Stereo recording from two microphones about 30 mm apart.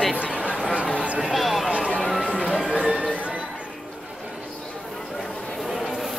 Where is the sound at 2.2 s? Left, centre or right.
Left.